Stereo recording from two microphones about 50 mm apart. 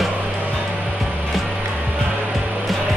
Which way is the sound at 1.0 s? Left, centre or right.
Centre.